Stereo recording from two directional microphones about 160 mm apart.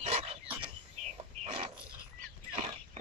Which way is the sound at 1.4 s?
35° right (ahead or behind).